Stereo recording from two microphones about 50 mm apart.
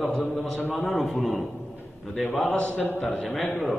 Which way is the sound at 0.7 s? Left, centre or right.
Centre.